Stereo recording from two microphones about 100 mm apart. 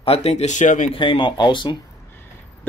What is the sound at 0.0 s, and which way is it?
Speech, 85° left.